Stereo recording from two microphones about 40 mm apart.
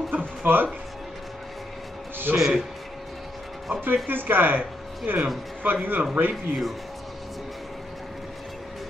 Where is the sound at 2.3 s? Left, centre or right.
Centre.